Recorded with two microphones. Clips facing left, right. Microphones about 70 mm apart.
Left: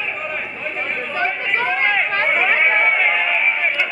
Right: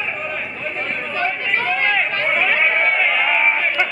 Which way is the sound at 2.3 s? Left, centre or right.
Centre.